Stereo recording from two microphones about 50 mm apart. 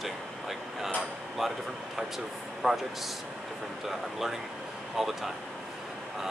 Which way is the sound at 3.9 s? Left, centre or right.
Centre.